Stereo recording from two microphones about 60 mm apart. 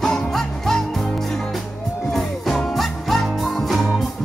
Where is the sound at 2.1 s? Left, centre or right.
Centre.